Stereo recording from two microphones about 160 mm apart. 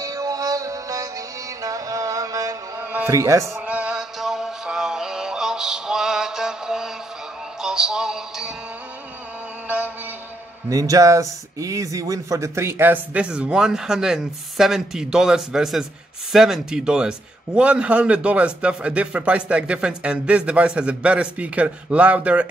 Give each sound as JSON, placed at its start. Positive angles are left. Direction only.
{"t": 0.0, "sound": "music", "side_deg": -20}
{"t": 3.5, "sound": "music", "side_deg": -10}
{"t": 10.7, "sound": "speech", "side_deg": -20}